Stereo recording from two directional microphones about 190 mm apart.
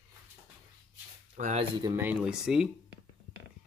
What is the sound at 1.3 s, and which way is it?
Speech, 40° right (ahead or behind).